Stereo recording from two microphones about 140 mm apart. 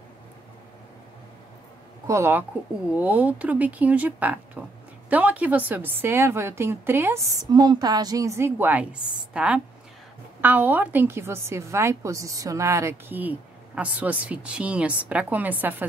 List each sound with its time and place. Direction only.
2.0 s a woman's voice: 20° right (ahead or behind)
7.5 s a woman's voice: 30° right (ahead or behind); by 15.7 s 10° right (ahead or behind)